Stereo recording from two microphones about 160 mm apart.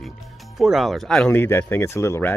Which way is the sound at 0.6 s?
Centre (ahead or behind).